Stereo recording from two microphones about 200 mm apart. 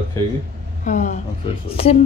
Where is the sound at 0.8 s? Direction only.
40° left (ahead or behind).